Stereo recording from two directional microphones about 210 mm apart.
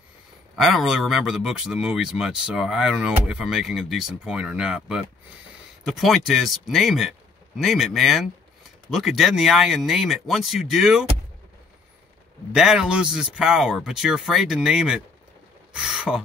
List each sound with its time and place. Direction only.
0.6 s speech: centre (ahead or behind)
12.5 s speech: 5° right (ahead or behind)